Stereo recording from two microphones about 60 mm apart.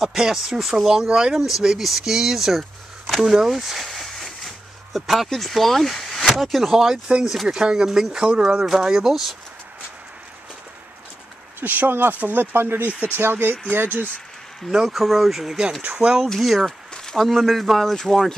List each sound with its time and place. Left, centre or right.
0.0 s speech: centre
11.6 s speech: right
14.7 s speech: centre
15.8 s speech: right
16.3 s speech: centre